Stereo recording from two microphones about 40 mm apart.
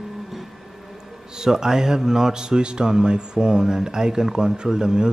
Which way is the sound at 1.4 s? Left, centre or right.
Centre.